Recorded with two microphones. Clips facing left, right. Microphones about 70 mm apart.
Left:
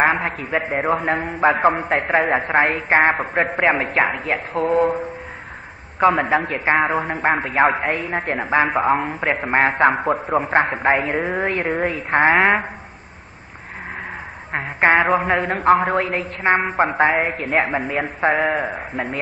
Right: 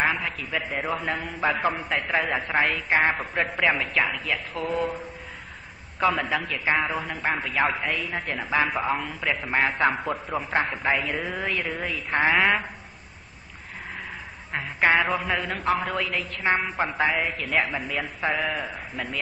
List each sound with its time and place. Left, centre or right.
0.0 s a man's voice: left
14.5 s a man's voice: left